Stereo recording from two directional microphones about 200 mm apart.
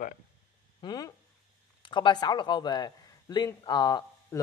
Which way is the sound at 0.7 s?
20° left (ahead or behind).